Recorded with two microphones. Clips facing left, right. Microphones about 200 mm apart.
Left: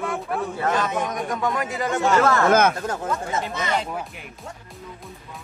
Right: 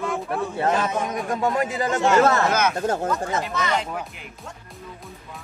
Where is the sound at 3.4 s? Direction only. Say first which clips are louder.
Right 1 dB; 25° left (ahead or behind).